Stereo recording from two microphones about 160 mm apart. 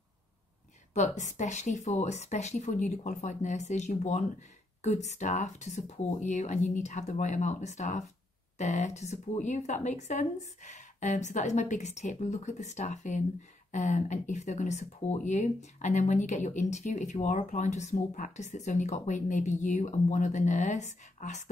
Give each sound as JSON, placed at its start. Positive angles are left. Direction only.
{"t": 0.9, "sound": "speech", "side_deg": 50}